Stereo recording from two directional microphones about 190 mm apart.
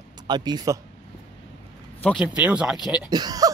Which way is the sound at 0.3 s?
20° right (ahead or behind).